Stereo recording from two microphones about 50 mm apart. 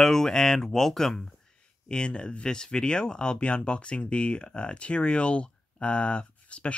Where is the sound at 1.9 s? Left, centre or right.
Centre.